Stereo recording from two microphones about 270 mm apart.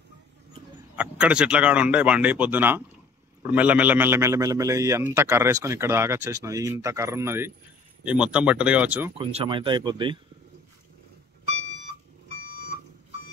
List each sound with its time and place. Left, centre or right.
0.9 s a man's voice: centre
9.2 s a man's voice: centre